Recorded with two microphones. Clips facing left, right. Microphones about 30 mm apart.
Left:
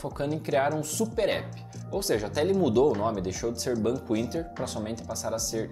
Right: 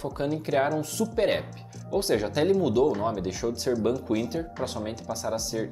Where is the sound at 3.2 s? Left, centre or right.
Centre.